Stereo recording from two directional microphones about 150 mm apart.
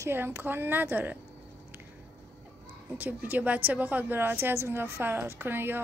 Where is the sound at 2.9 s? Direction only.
10° right (ahead or behind).